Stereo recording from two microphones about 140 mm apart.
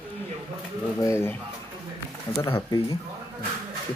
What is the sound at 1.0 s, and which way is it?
Speech, 15° left (ahead or behind).